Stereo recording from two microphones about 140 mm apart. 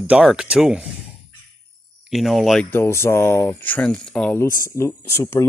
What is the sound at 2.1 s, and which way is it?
Speech, centre (ahead or behind).